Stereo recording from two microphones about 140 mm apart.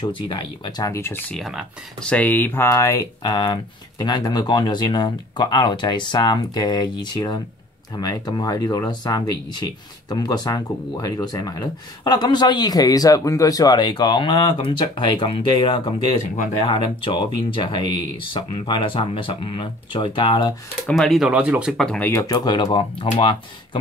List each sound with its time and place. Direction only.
0.0 s speech: 35° left (ahead or behind)
1.3 s speech: centre (ahead or behind)
2.0 s speech: 10° left (ahead or behind); by 20.5 s 35° left (ahead or behind)
20.8 s speech: centre (ahead or behind)
21.7 s speech: 5° left (ahead or behind)
22.1 s speech: 25° left (ahead or behind)